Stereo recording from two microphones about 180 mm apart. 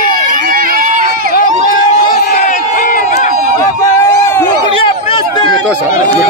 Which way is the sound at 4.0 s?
15° left (ahead or behind).